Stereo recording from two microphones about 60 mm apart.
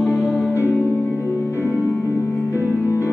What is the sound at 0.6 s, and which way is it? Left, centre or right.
Music, left.